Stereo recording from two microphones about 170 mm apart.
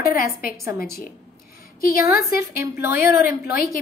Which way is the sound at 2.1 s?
15° right (ahead or behind).